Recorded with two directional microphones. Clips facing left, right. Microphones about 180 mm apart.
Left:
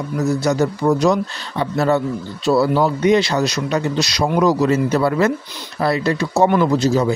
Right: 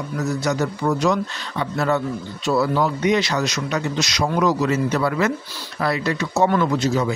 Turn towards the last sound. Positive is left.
turn(degrees=35)  # may be behind; listen again after turning